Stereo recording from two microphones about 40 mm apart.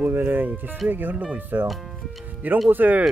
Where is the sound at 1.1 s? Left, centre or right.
Right.